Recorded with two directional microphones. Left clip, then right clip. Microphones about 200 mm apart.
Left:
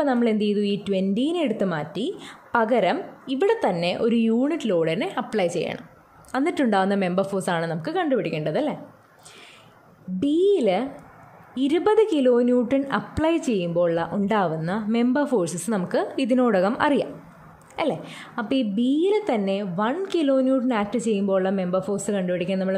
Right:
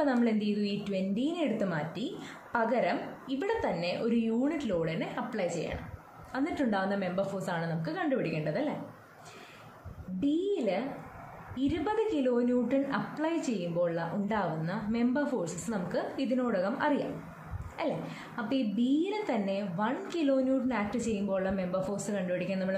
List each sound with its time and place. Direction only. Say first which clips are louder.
0.0 s a woman's voice: left 7 dB; 45° left (ahead or behind)
10.2 s a woman's voice: left 11 dB; 50° left (ahead or behind)